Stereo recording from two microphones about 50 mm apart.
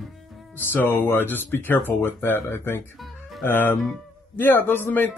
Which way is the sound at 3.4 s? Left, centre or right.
Left.